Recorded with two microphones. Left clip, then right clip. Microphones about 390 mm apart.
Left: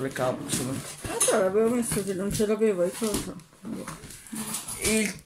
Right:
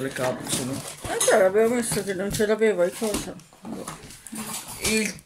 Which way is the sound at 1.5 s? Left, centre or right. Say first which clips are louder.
Right 3 dB; right.